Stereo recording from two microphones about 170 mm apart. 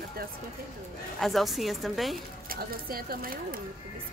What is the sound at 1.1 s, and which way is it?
A woman's voice, centre (ahead or behind).